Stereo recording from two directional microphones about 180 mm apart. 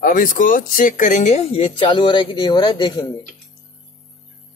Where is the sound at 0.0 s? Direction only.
50° left (ahead or behind); by 3.1 s 25° left (ahead or behind).